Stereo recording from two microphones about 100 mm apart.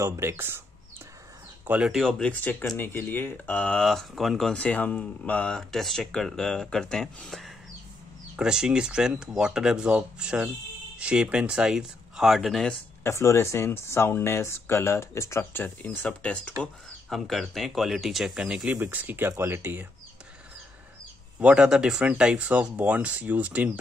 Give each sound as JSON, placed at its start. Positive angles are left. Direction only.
{"t": 0.0, "sound": "speech", "side_deg": -30}
{"t": 1.9, "sound": "speech", "side_deg": 0}
{"t": 2.8, "sound": "speech", "side_deg": 20}
{"t": 8.4, "sound": "speech", "side_deg": -5}
{"t": 13.0, "sound": "speech", "side_deg": 30}
{"t": 17.1, "sound": "speech", "side_deg": 0}
{"t": 18.8, "sound": "speech", "side_deg": -20}
{"t": 21.4, "sound": "speech", "side_deg": -10}